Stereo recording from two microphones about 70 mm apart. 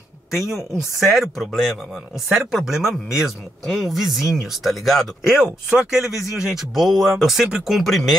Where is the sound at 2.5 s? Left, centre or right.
Centre.